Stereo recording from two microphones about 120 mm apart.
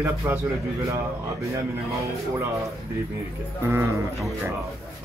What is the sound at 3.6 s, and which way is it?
Speech, 20° right (ahead or behind).